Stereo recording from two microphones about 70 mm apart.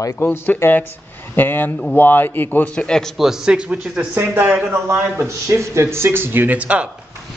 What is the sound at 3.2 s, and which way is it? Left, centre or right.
A man's voice, centre.